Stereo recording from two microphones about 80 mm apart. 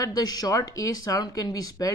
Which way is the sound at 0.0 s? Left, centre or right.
Left.